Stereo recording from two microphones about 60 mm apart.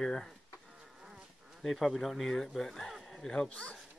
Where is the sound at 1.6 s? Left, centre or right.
Centre.